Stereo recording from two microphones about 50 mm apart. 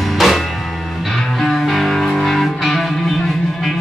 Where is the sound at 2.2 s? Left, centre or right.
Centre.